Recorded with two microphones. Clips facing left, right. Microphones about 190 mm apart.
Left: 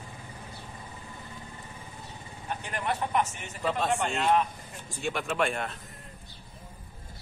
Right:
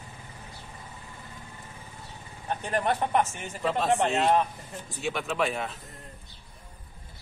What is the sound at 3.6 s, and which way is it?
Speech, centre (ahead or behind).